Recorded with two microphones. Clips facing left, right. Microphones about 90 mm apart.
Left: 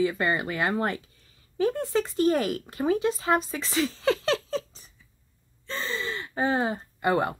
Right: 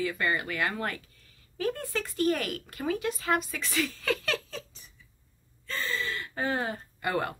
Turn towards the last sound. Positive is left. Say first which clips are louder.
# left 6 dB
turn(degrees=25)  # may be behind; listen again after turning